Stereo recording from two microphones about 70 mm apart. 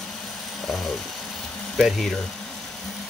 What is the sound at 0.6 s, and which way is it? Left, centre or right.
Vehicle, centre.